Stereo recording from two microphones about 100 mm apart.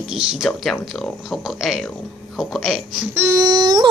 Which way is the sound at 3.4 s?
45° right (ahead or behind).